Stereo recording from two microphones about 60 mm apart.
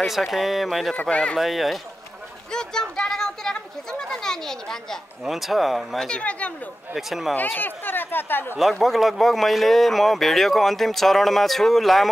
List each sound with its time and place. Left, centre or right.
0.0 s speech: centre
0.9 s speech: centre
1.4 s speech: centre
2.5 s speech: centre
5.2 s speech: centre
6.0 s speech: centre
7.0 s speech: centre
7.5 s speech: left
8.7 s speech: centre